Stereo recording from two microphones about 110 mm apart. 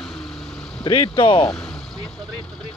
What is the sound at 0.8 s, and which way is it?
Speech, 50° left (ahead or behind).